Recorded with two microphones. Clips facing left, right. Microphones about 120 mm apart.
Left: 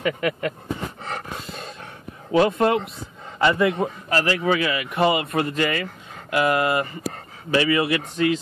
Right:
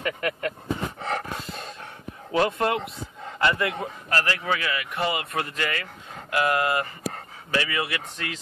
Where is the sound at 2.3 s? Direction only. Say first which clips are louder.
Left 5 dB; 20° left (ahead or behind).